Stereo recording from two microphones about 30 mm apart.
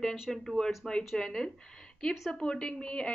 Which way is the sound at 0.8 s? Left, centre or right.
Left.